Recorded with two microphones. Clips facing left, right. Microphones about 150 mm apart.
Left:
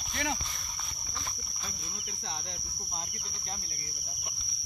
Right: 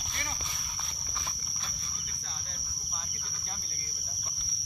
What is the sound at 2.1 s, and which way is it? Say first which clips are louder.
Cricket: left 10 dB; 65° left (ahead or behind).